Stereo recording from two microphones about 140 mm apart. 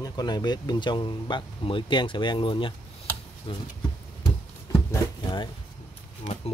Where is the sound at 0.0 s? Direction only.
30° left (ahead or behind).